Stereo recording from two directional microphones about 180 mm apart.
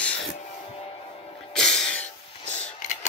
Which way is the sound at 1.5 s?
5° left (ahead or behind).